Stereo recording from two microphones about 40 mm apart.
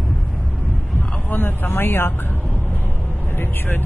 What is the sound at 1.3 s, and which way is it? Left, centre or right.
Vehicle, left.